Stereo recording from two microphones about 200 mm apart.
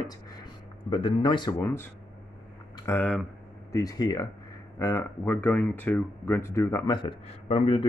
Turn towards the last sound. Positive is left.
turn(degrees=30)  # may be behind; listen again after turning